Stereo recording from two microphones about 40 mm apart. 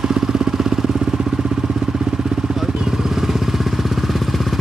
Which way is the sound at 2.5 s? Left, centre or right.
Centre.